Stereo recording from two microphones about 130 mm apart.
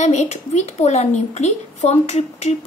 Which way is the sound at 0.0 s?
60° left (ahead or behind).